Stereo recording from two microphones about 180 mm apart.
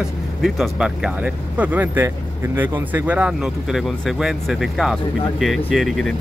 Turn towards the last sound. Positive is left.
turn(degrees=0)  # may be behind; listen again after turning